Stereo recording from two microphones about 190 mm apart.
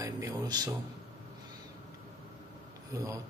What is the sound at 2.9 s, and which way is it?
Speech, 15° right (ahead or behind).